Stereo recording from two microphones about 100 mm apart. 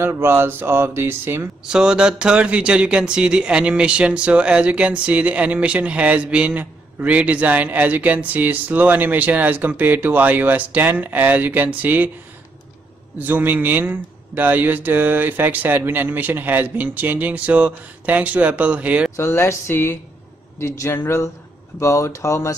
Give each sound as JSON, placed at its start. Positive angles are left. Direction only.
{"t": 0.0, "sound": "speech", "side_deg": -25}
{"t": 1.7, "sound": "speech", "side_deg": -10}
{"t": 13.2, "sound": "speech", "side_deg": -20}
{"t": 19.1, "sound": "speech", "side_deg": 25}